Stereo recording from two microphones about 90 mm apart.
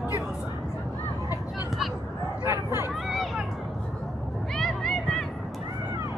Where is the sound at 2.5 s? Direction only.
30° right (ahead or behind).